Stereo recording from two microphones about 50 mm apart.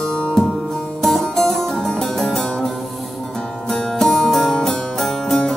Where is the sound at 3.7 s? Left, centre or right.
Centre.